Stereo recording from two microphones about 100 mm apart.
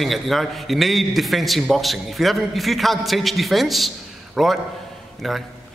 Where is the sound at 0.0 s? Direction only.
Centre (ahead or behind).